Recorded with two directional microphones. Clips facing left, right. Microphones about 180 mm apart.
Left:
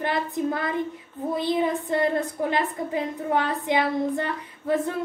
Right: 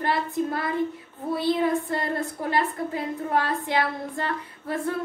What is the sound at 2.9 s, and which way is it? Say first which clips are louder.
Child singing: left 2 dB; 20° left (ahead or behind).